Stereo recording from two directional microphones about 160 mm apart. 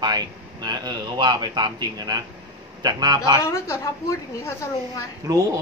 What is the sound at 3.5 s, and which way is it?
A woman's voice, 20° left (ahead or behind).